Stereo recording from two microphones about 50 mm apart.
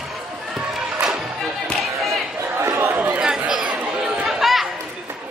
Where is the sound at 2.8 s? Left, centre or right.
Right.